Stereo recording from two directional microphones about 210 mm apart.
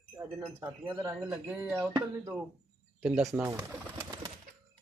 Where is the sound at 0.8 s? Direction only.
20° right (ahead or behind).